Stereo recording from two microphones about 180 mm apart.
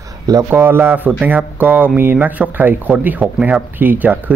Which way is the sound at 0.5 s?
10° right (ahead or behind).